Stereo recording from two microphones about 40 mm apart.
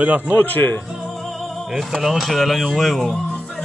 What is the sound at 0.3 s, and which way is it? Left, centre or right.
Speech, left.